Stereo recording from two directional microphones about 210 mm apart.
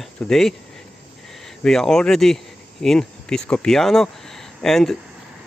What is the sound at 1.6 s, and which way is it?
Speech, centre (ahead or behind).